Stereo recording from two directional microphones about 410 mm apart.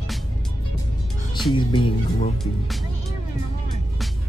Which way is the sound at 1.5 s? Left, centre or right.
Centre.